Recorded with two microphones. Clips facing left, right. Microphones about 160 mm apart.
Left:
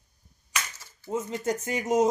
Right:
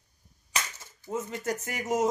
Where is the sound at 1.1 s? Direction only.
20° left (ahead or behind).